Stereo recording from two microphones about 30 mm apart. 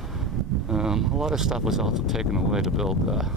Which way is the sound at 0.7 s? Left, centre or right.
Right.